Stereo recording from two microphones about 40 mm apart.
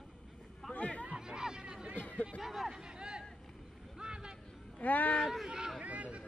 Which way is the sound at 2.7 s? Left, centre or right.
Centre.